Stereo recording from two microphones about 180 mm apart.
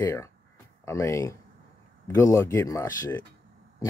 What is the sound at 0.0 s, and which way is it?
Speech, 15° left (ahead or behind).